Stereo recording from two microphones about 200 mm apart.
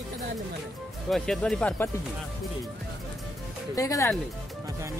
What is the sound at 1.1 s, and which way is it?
Speech, 5° left (ahead or behind).